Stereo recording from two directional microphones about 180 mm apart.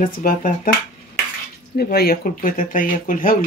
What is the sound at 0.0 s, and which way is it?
Speech, 50° left (ahead or behind).